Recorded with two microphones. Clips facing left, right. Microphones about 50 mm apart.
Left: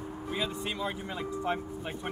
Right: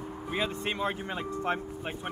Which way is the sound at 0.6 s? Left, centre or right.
Right.